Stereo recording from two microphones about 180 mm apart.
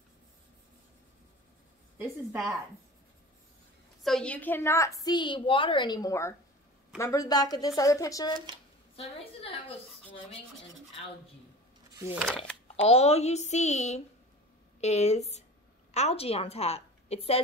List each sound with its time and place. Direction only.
4.0 s a woman's voice: 5° left (ahead or behind); by 8.4 s 20° left (ahead or behind)
8.9 s a woman's voice: 30° left (ahead or behind)
12.3 s speech: 5° left (ahead or behind)
12.7 s a woman's voice: 35° left (ahead or behind)